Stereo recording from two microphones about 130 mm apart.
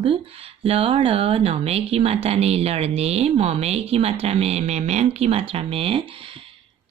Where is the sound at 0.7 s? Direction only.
45° right (ahead or behind).